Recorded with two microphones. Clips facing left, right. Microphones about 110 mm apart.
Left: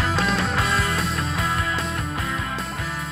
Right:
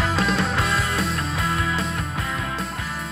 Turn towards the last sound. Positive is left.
turn(degrees=0)  # may be behind; listen again after turning